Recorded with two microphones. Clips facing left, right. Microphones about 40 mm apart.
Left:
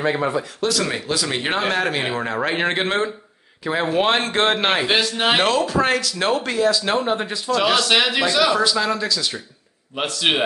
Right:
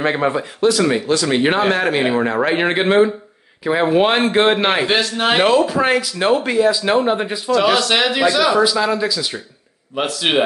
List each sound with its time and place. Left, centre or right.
0.1 s speech: right
0.7 s a man's voice: centre
5.4 s speech: centre
7.5 s a man's voice: centre